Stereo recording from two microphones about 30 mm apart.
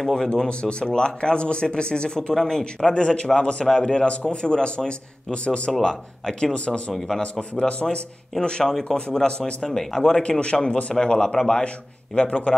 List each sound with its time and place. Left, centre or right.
0.0 s speech: centre
0.5 s speech: left
2.3 s speech: centre
2.9 s speech: left
5.7 s speech: centre
6.5 s speech: left
7.8 s a man's voice: left
8.6 s speech: centre
10.4 s a man's voice: left
12.2 s speech: left